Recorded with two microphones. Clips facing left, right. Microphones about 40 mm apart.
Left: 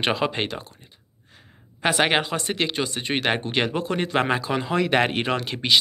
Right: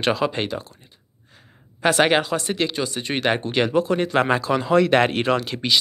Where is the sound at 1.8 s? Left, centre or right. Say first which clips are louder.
Right 3 dB; left.